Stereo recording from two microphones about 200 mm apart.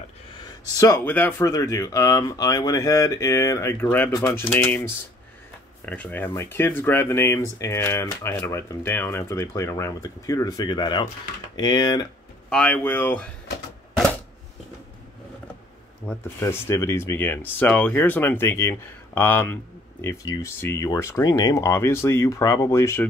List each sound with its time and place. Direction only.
0.7 s speech: 15° left (ahead or behind)
12.4 s speech: 5° left (ahead or behind)
16.1 s speech: 10° left (ahead or behind)